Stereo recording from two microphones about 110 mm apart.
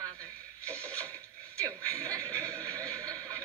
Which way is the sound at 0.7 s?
10° left (ahead or behind).